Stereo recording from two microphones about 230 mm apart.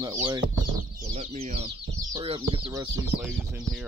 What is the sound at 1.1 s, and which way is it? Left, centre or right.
Speech, right.